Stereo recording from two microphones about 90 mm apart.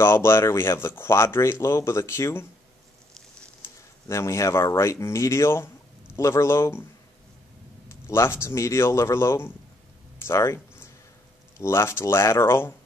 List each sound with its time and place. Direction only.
0.0 s speech: 30° left (ahead or behind)
4.1 s speech: 35° left (ahead or behind)
8.1 s speech: 30° left (ahead or behind)